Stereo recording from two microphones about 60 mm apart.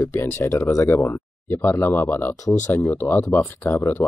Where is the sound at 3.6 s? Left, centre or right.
Left.